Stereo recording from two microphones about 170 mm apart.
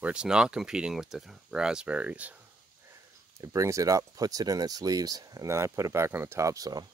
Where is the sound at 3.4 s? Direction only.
20° right (ahead or behind).